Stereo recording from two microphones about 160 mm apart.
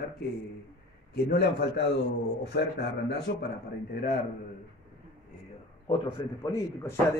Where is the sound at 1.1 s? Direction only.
80° left.